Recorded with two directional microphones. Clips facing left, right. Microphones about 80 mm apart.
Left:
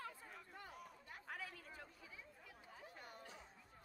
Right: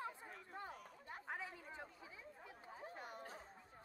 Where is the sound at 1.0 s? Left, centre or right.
Right.